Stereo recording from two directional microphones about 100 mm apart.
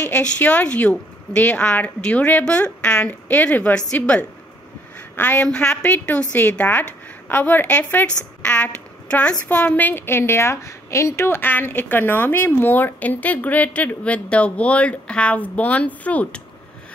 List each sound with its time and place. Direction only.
0.0 s a woman's voice: 15° left (ahead or behind)